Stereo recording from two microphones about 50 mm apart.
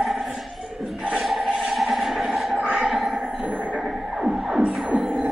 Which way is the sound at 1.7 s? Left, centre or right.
Centre.